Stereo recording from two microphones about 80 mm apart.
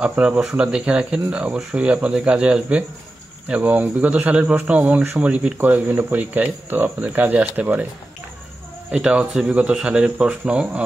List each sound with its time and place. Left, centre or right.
0.0 s speech: centre
8.9 s speech: centre